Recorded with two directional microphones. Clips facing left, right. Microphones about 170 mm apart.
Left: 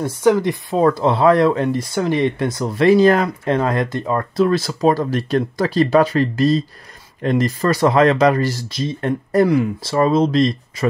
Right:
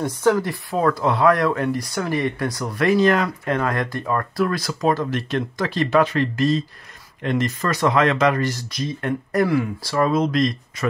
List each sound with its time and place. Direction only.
0.0 s speech: 15° left (ahead or behind)